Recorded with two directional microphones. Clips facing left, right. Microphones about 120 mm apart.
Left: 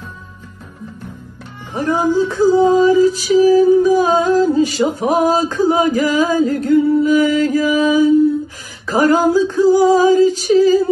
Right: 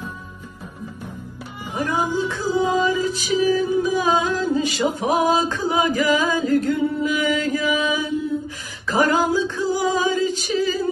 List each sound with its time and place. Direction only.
1.8 s female singing: 40° left (ahead or behind)